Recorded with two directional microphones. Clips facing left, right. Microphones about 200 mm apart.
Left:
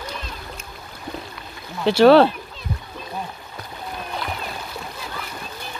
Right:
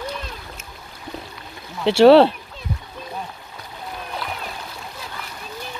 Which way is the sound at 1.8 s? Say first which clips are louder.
Right 1 dB; 25° right (ahead or behind).